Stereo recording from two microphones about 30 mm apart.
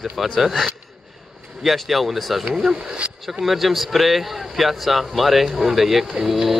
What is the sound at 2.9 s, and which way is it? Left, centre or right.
Speech, right.